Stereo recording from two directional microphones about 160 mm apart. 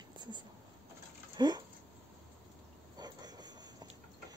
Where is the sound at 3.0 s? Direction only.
25° right (ahead or behind).